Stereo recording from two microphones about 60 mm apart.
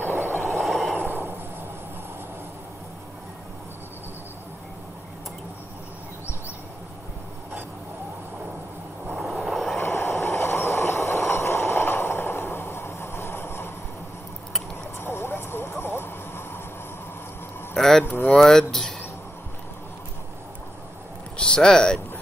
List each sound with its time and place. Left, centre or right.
0.5 s vehicle: centre
0.9 s a sound: right
9.2 s vehicle: centre
9.8 s train: left
15.0 s vehicle: left
17.7 s a sound: centre
18.0 s speech: left
18.3 s speech: centre
21.4 s speech: centre